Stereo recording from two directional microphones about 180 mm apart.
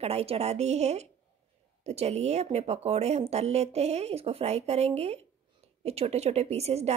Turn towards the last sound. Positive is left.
turn(degrees=-35)  # may be behind; listen again after turning